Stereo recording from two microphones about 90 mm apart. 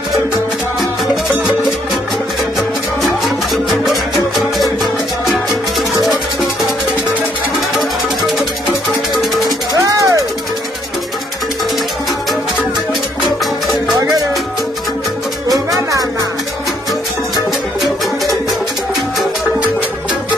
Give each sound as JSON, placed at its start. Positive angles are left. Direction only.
{"t": 3.6, "sound": "music", "side_deg": 0}
{"t": 7.7, "sound": "music", "side_deg": 0}
{"t": 9.8, "sound": "music", "side_deg": -35}
{"t": 13.2, "sound": "music", "side_deg": 0}
{"t": 13.9, "sound": "music", "side_deg": -50}
{"t": 15.9, "sound": "music", "side_deg": -40}